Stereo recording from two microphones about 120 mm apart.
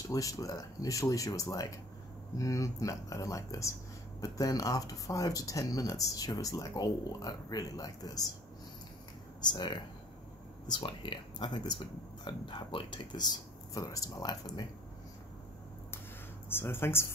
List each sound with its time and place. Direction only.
0.1 s speech: 30° left (ahead or behind)
9.4 s speech: 40° left (ahead or behind)
16.4 s speech: 20° left (ahead or behind)